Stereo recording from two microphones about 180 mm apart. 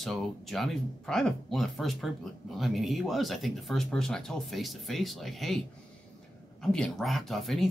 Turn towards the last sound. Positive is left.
turn(degrees=0)  # may be behind; listen again after turning